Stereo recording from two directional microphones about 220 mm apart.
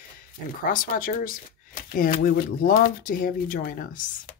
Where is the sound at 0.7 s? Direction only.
40° left (ahead or behind).